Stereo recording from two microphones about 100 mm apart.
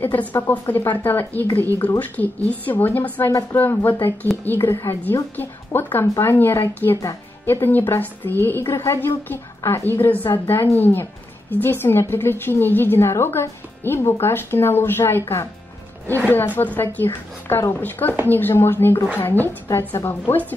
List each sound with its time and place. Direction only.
0.0 s a woman's voice: 20° left (ahead or behind)
16.5 s a woman's voice: 20° left (ahead or behind)